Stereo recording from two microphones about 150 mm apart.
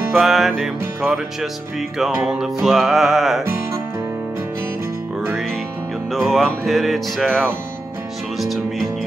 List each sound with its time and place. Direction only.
0.2 s music: centre (ahead or behind)
6.1 s music: centre (ahead or behind)